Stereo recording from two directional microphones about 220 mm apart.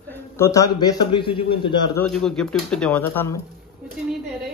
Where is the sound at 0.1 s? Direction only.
15° left (ahead or behind).